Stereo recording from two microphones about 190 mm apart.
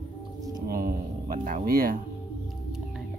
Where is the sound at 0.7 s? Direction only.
50° right (ahead or behind).